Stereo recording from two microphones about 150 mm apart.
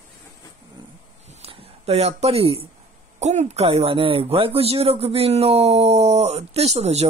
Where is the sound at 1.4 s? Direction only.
45° right (ahead or behind).